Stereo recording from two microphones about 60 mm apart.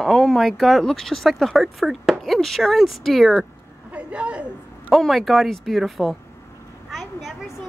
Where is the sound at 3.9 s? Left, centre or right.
Centre.